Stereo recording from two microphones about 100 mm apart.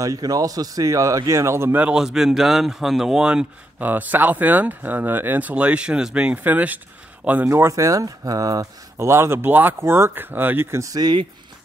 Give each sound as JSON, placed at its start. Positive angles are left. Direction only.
{"t": 0.0, "sound": "speech", "side_deg": -35}
{"t": 3.8, "sound": "speech", "side_deg": -20}
{"t": 7.4, "sound": "speech", "side_deg": -30}